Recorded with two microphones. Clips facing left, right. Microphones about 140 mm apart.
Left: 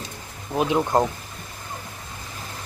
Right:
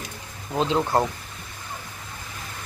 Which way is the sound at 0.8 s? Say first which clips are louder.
Left 2 dB; centre (ahead or behind).